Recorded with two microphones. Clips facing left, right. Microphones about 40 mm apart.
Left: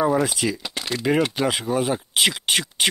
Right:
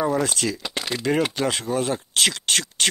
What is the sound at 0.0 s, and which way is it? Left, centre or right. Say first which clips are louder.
Speech: left 2 dB; centre.